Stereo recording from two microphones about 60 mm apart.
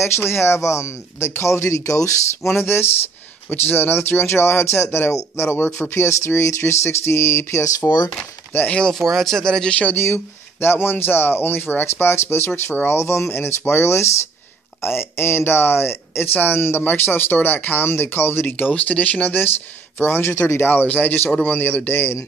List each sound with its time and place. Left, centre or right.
0.0 s speech: left
2.0 s speech: left
2.5 s speech: left
8.8 s speech: centre
9.9 s a man's voice: left